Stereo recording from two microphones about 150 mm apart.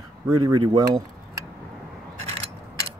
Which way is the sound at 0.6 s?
35° right (ahead or behind).